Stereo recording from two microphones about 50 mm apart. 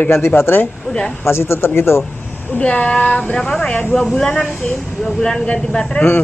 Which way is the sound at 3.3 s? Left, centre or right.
Centre.